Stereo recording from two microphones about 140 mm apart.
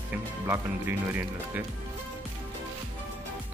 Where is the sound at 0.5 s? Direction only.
15° right (ahead or behind).